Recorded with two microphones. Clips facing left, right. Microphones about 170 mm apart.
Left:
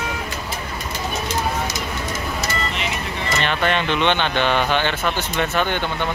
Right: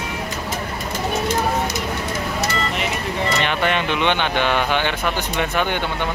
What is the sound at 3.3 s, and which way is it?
Speech, 15° right (ahead or behind).